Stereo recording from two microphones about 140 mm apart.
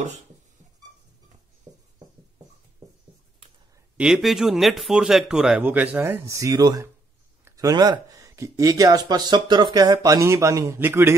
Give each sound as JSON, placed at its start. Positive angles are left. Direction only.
{"t": 3.9, "sound": "a man's voice", "side_deg": -5}